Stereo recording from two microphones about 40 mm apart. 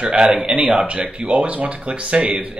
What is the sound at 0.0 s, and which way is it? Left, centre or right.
Speech, right.